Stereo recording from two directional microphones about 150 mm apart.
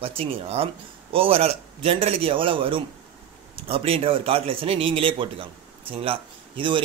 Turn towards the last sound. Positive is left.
turn(degrees=-35)  # may be behind; listen again after turning